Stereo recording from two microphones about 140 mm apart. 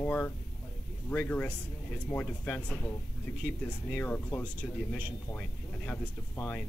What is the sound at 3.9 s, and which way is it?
Speech, 10° left (ahead or behind).